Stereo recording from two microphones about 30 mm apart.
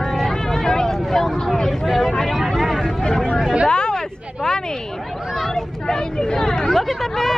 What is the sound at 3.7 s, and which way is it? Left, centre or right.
Hubbub, left.